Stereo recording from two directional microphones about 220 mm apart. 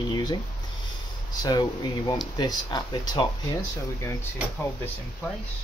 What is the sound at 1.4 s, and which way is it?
Speech, 20° left (ahead or behind).